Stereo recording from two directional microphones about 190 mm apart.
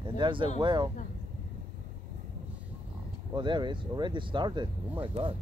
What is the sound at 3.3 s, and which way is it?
Speech, 25° right (ahead or behind).